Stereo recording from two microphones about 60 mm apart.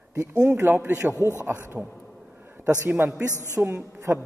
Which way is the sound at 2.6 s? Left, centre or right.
Right.